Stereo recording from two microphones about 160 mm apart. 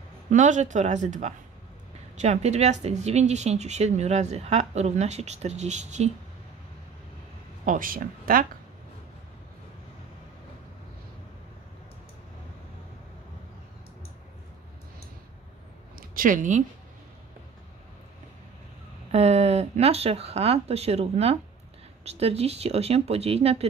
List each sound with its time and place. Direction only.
0.3 s speech: 50° right (ahead or behind)
7.6 s speech: 60° right (ahead or behind)
16.0 s speech: 60° right (ahead or behind)
19.1 s speech: 40° right (ahead or behind)